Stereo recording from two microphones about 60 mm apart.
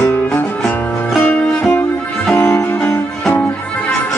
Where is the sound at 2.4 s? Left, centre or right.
Left.